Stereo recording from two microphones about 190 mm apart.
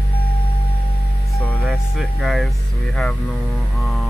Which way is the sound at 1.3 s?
5° left (ahead or behind).